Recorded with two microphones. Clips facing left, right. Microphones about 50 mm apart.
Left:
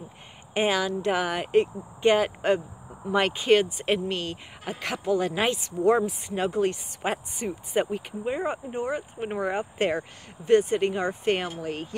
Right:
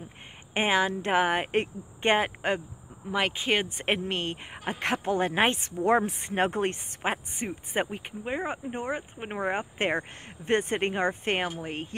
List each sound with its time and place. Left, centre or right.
0.6 s speech: right
3.1 s speech: centre
3.6 s speech: right
7.0 s speech: right